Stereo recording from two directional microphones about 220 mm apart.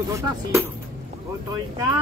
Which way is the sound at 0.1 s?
15° right (ahead or behind).